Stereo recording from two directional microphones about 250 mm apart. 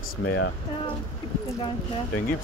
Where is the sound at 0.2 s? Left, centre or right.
Left.